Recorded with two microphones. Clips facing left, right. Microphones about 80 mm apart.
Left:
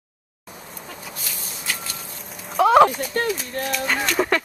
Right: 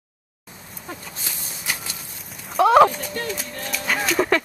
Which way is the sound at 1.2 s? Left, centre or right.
Right.